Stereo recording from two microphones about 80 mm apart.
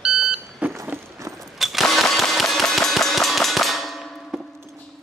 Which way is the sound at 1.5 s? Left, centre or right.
Centre.